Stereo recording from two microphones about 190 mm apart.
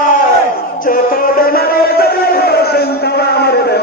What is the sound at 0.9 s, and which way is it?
Music, 50° left (ahead or behind).